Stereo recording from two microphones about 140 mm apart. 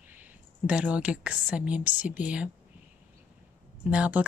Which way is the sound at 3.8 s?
10° right (ahead or behind).